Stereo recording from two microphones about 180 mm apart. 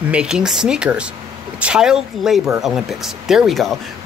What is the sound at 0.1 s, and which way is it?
Speech, 5° right (ahead or behind).